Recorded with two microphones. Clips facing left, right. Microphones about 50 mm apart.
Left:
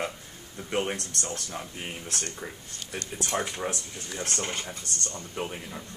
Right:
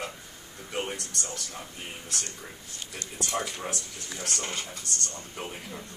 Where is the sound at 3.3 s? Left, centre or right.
Left.